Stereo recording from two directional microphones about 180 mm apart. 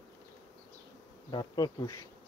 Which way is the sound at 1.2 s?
25° left (ahead or behind).